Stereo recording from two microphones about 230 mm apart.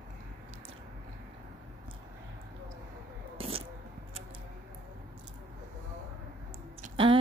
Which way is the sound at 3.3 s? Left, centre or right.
Right.